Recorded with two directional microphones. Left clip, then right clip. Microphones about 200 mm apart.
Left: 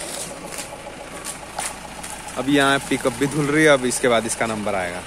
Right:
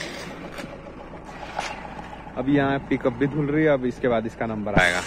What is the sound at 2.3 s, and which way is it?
Speech, 5° left (ahead or behind).